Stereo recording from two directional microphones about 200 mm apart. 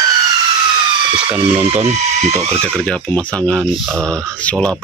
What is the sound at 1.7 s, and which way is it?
Speech, 30° right (ahead or behind).